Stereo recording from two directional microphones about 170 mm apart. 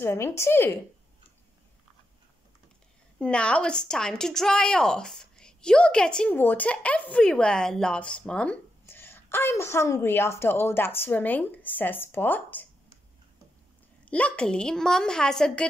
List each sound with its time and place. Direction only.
0.0 s speech: 15° left (ahead or behind)
3.2 s speech: 5° left (ahead or behind)
14.0 s a child's voice: 10° left (ahead or behind)